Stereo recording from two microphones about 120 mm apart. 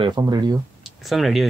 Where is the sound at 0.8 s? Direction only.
Centre (ahead or behind).